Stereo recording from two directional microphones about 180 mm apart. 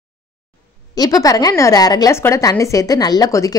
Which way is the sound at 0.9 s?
20° left (ahead or behind).